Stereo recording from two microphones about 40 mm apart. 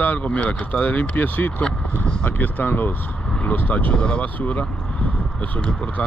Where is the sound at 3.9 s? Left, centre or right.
Left.